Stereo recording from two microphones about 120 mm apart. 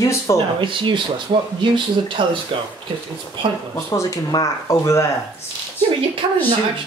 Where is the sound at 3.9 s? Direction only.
25° left (ahead or behind).